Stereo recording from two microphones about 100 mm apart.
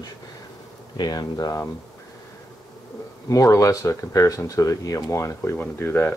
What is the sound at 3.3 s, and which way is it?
Speech, 35° left (ahead or behind).